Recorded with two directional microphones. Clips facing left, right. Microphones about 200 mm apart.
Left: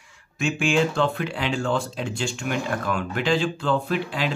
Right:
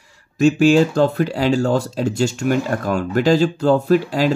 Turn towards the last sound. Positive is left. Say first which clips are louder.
# right 10 dB
turn(degrees=-40)  # may be behind; listen again after turning